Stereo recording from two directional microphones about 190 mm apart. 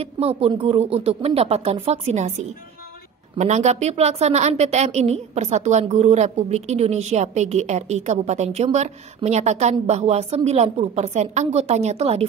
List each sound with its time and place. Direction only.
0.0 s a woman's voice: 30° right (ahead or behind)